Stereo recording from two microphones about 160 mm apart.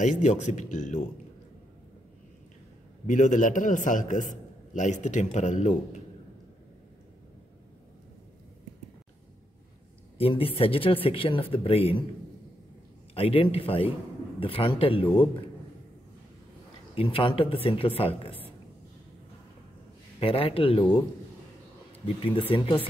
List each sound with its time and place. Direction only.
0.0 s a man's voice: 50° left (ahead or behind)
3.1 s a man's voice: 50° left (ahead or behind)
10.1 s speech: 35° left (ahead or behind)
13.1 s speech: 35° left (ahead or behind)
16.9 s speech: 35° left (ahead or behind)
20.2 s speech: 35° left (ahead or behind)
22.0 s speech: 35° left (ahead or behind)